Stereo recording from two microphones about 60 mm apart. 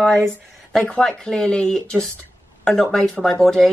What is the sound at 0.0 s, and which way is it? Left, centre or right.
A woman's voice, centre.